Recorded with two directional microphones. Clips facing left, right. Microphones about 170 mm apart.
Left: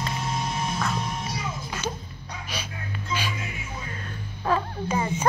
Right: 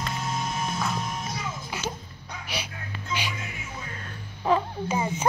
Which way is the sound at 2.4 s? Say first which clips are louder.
Even; 15° right (ahead or behind).